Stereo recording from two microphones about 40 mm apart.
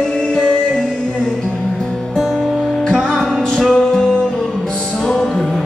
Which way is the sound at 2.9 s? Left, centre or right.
Centre.